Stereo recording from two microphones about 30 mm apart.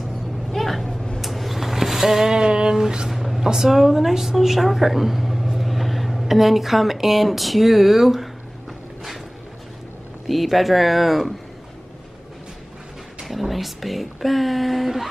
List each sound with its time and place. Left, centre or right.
0.5 s vehicle: centre
2.3 s a sound: right
3.1 s a sound: centre
3.6 s a woman's voice: centre
10.2 s speech: centre
13.2 s speech: centre